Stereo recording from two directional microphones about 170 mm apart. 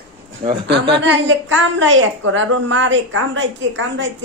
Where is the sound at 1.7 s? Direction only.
90° right.